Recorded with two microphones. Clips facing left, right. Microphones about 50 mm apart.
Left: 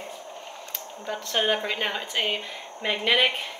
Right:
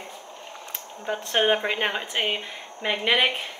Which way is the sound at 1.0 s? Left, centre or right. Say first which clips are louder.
Right 3 dB; right.